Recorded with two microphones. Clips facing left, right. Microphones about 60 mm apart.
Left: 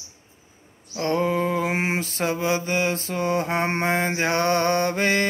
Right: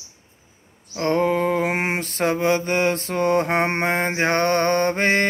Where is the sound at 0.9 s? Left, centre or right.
Right.